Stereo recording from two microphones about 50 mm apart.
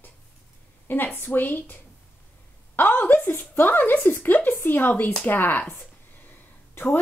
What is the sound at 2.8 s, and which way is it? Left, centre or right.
A woman's voice, left.